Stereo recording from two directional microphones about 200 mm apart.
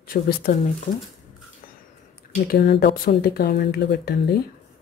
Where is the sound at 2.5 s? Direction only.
55° left (ahead or behind).